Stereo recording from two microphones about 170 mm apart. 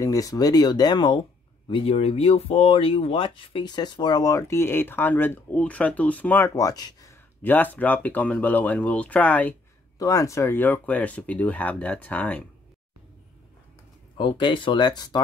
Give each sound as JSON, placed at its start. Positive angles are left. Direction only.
{"t": 0.0, "sound": "speech", "side_deg": 20}
{"t": 9.9, "sound": "speech", "side_deg": 20}
{"t": 14.1, "sound": "speech", "side_deg": 30}